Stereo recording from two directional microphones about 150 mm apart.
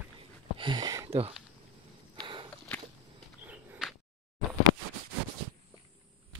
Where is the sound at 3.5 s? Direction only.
Centre (ahead or behind).